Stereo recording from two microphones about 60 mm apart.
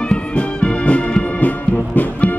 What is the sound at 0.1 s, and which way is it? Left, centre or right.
Music, centre.